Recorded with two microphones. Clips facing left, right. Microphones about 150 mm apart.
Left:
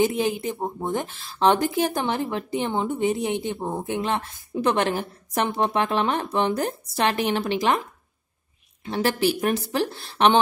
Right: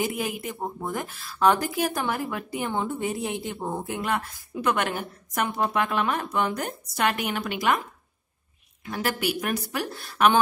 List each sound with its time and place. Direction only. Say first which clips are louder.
0.0 s a woman's voice: left 6 dB; 25° left (ahead or behind)
8.8 s a woman's voice: left 5 dB; 30° left (ahead or behind)